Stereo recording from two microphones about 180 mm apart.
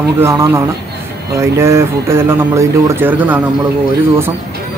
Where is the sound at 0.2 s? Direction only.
15° right (ahead or behind).